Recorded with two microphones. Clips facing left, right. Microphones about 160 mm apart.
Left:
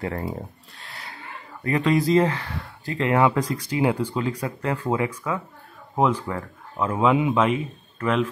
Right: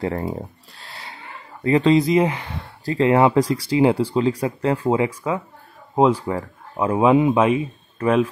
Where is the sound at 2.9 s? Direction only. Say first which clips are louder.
Right 4 dB; 30° right (ahead or behind).